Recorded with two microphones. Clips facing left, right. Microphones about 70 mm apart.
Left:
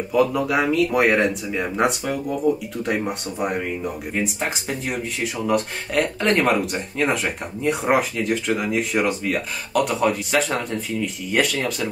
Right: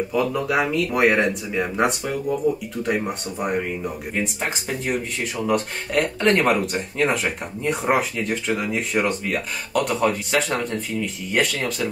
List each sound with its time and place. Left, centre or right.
0.1 s speech: centre